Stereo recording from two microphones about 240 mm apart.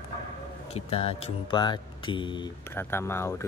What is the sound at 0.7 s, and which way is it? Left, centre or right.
Speech, left.